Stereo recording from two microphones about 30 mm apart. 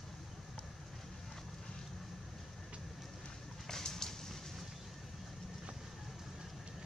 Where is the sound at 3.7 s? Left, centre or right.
Centre.